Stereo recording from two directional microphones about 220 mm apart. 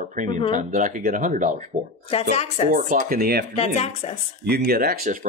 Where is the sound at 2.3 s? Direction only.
30° left (ahead or behind).